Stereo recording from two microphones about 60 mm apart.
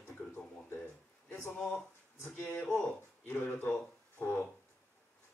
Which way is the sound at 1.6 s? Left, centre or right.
Centre.